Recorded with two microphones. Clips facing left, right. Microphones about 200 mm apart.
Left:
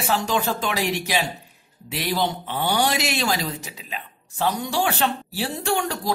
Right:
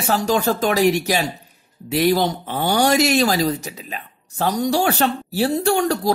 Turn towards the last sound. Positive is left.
turn(degrees=-40)  # may be behind; listen again after turning